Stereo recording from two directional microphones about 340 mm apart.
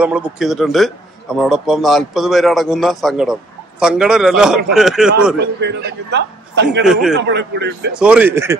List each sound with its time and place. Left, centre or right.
0.0 s a man's voice: centre
5.4 s a man's voice: right
6.9 s a man's voice: centre
7.2 s a man's voice: right
8.0 s a man's voice: centre